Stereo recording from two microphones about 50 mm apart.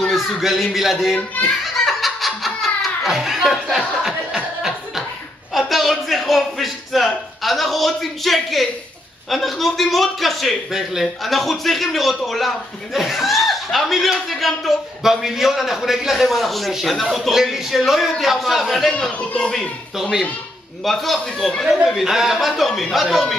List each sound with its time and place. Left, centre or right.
0.1 s a man's voice: centre
1.1 s a child's voice: left
1.6 s laughter: centre
3.1 s music: centre
5.5 s a sound: centre
9.3 s a man's voice: centre
10.7 s a man's voice: centre